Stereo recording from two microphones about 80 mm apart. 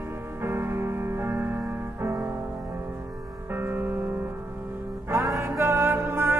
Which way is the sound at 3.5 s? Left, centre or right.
Right.